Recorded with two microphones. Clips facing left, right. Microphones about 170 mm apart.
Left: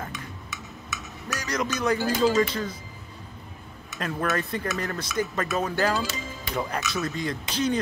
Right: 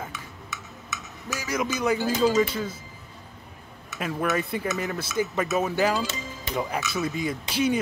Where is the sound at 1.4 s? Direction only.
5° right (ahead or behind).